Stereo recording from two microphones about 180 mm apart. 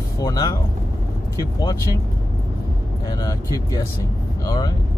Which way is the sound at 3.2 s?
20° left (ahead or behind).